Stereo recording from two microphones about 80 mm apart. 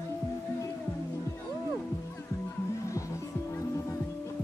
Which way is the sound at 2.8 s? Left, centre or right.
Left.